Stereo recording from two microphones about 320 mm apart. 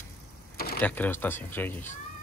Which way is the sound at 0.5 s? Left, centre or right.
Left.